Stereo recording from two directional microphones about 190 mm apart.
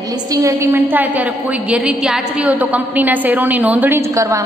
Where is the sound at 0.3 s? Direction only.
15° right (ahead or behind).